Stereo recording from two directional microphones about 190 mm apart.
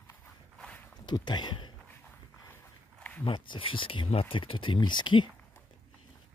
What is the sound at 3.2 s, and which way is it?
Speech, 25° left (ahead or behind).